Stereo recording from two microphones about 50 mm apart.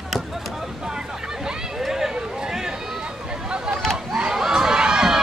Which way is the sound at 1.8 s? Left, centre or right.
Centre.